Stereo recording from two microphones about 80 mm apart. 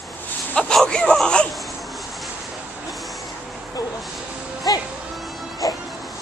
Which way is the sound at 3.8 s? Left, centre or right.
Left.